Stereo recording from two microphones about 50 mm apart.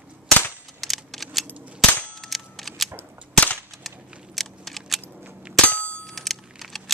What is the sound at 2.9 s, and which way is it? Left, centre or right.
Cap gun, left.